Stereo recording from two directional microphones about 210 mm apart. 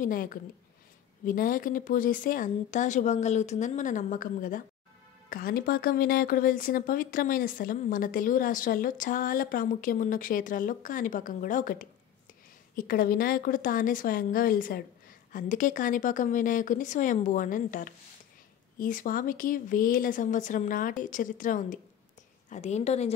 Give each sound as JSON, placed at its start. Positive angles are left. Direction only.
{"t": 0.0, "sound": "a woman's voice", "side_deg": 40}